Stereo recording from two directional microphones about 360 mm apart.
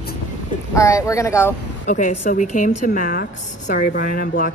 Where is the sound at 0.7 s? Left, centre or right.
Centre.